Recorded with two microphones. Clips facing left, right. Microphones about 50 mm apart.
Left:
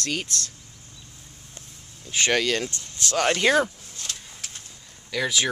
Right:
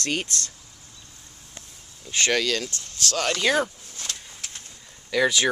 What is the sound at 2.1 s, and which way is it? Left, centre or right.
Speech, centre.